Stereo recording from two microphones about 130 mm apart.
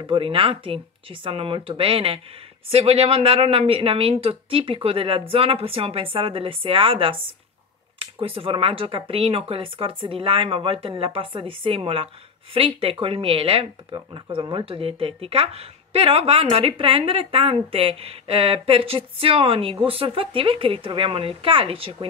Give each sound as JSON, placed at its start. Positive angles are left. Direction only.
{"t": 0.0, "sound": "speech", "side_deg": -40}